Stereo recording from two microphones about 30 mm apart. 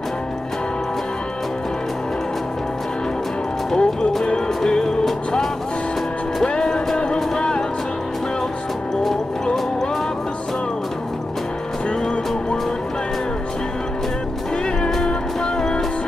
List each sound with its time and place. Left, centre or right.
3.7 s music: left
6.6 s music: centre
7.3 s music: left